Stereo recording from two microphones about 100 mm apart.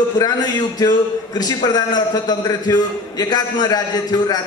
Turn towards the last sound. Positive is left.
turn(degrees=40)  # may be behind; listen again after turning